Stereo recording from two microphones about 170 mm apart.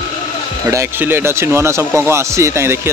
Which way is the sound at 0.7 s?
15° right (ahead or behind).